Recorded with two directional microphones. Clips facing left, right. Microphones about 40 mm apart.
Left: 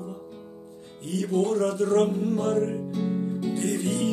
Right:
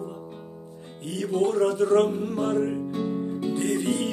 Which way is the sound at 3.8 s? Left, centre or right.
Right.